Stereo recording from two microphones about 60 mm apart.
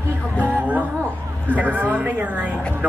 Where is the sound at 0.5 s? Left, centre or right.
Right.